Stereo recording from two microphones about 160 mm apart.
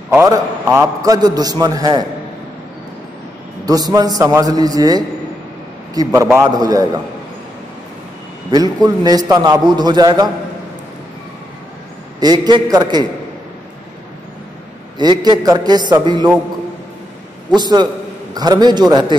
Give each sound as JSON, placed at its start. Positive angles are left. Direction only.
{"t": 0.1, "sound": "a man's voice", "side_deg": -20}
{"t": 3.6, "sound": "a man's voice", "side_deg": -25}
{"t": 8.5, "sound": "a man's voice", "side_deg": -25}
{"t": 12.2, "sound": "a man's voice", "side_deg": -25}
{"t": 15.0, "sound": "a man's voice", "side_deg": -25}
{"t": 17.6, "sound": "a man's voice", "side_deg": -25}